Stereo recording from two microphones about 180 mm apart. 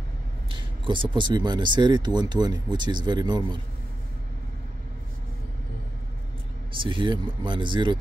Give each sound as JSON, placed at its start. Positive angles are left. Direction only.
{"t": 0.5, "sound": "speech", "side_deg": -25}
{"t": 6.7, "sound": "speech", "side_deg": -30}